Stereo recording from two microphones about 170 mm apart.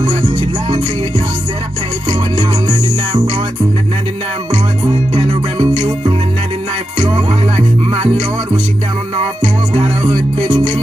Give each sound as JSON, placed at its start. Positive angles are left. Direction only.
{"t": 2.7, "sound": "music", "side_deg": -30}
{"t": 4.8, "sound": "music", "side_deg": -30}
{"t": 9.8, "sound": "music", "side_deg": -35}